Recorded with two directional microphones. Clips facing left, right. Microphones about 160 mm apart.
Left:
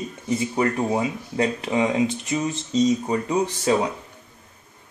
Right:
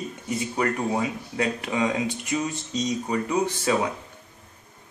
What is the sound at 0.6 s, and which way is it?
A man's voice, 25° left (ahead or behind).